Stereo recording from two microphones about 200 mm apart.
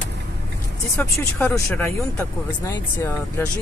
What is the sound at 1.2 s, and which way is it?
Speech, 15° left (ahead or behind).